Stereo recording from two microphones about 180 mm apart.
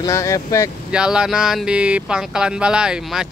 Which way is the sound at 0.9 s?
5° right (ahead or behind).